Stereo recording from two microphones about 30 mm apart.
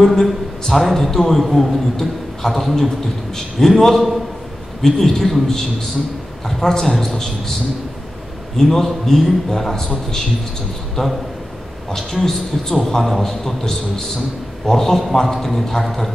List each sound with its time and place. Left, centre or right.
0.0 s a man's voice: centre
2.0 s a man's voice: centre
8.5 s a man's voice: centre
9.5 s a man's voice: centre